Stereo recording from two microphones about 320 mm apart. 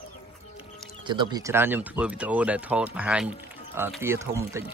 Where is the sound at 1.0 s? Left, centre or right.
Centre.